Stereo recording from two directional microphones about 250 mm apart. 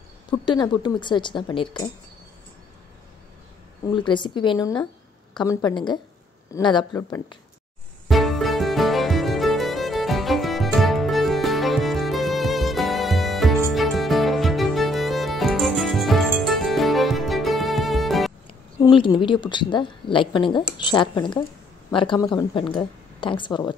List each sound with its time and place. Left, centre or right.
0.3 s a woman's voice: centre
3.9 s a woman's voice: centre
8.1 s music: centre
18.8 s a woman's voice: centre